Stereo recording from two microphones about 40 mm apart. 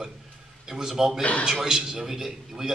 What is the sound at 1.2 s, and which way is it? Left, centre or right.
Speech, left.